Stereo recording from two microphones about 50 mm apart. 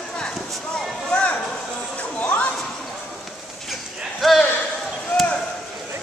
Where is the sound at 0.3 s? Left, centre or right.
Centre.